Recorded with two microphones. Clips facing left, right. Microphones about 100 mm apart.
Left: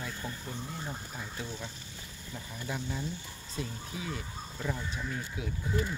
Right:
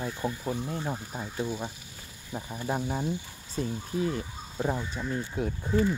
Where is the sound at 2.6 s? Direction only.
45° right (ahead or behind).